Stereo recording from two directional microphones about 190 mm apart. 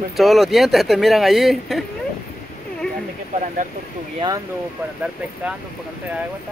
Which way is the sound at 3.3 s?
40° right (ahead or behind).